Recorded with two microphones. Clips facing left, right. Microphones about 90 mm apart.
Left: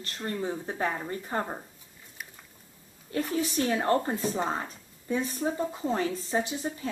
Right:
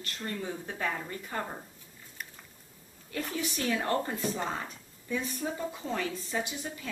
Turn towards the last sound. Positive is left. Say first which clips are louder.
# left 5 dB
turn(degrees=35)  # may be behind; listen again after turning